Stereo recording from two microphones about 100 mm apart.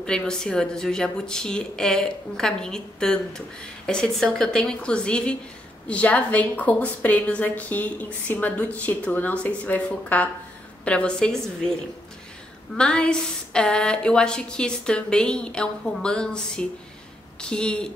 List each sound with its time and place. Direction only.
0.0 s a woman's voice: 5° left (ahead or behind)
12.7 s a woman's voice: 10° left (ahead or behind)